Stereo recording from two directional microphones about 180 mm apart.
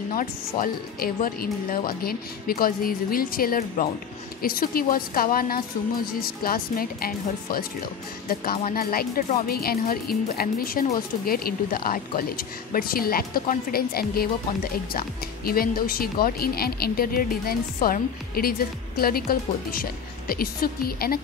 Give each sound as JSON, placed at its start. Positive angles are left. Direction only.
{"t": 0.1, "sound": "a woman's voice", "side_deg": 50}
{"t": 8.6, "sound": "a woman's voice", "side_deg": 55}